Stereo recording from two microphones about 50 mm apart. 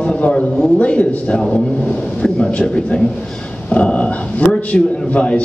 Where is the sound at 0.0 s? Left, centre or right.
Left.